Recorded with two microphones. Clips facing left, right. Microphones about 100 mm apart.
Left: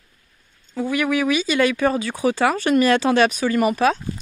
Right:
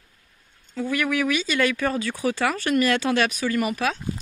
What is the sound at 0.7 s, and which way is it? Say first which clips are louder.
Speech: left 3 dB; 15° left (ahead or behind).